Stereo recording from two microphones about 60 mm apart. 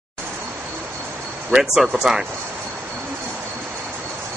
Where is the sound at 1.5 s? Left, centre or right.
Centre.